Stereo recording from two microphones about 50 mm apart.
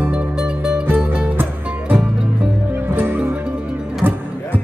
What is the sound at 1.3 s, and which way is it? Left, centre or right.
Music, right.